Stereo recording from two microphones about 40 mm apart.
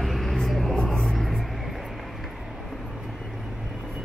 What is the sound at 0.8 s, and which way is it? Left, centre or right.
Music, centre.